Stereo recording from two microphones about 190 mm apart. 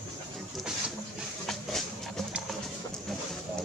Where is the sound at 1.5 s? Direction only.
Centre (ahead or behind).